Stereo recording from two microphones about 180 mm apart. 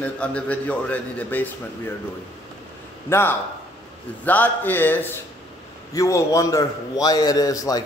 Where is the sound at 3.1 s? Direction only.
15° left (ahead or behind).